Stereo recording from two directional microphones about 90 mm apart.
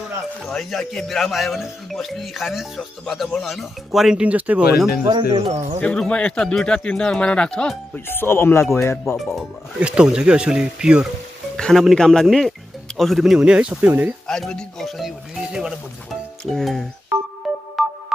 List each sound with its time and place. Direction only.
0.5 s speech: centre (ahead or behind); by 4.6 s 15° right (ahead or behind)
5.0 s speech: 45° right (ahead or behind)
5.8 s speech: 15° left (ahead or behind)
8.1 s speech: 25° left (ahead or behind)
9.0 s speech: centre (ahead or behind)
9.8 s speech: 10° right (ahead or behind)
11.5 s speech: 5° left (ahead or behind); by 14.1 s 20° right (ahead or behind)
14.2 s speech: 5° left (ahead or behind)
16.4 s speech: 5° left (ahead or behind)
17.8 s music: centre (ahead or behind)